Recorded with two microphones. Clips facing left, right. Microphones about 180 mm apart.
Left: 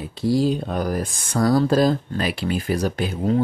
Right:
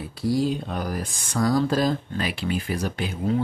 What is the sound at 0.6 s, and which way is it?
Speech, 45° left (ahead or behind).